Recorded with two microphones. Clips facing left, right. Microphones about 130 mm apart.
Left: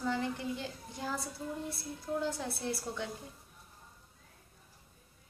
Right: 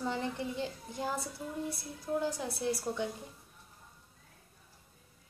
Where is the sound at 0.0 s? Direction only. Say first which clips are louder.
Left 1 dB; 25° right (ahead or behind).